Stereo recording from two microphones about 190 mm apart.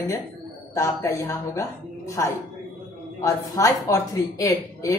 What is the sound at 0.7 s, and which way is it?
Speech, 15° left (ahead or behind).